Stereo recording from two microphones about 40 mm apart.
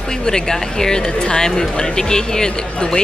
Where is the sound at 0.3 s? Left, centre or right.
Centre.